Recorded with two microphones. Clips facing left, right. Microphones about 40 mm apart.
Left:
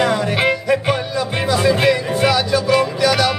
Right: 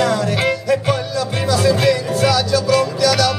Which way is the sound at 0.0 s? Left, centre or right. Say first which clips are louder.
Left 1 dB; left.